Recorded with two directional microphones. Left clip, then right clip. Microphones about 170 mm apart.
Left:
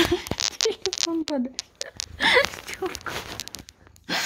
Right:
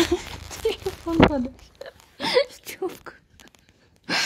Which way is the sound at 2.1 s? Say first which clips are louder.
Left 2 dB; 10° right (ahead or behind).